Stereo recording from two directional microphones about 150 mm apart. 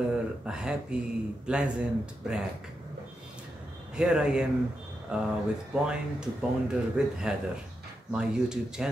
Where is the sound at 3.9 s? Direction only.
5° right (ahead or behind).